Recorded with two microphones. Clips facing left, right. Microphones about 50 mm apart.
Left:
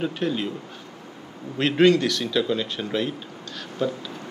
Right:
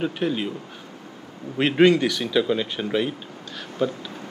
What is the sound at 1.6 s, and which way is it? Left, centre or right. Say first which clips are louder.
Speech: right 1 dB; centre.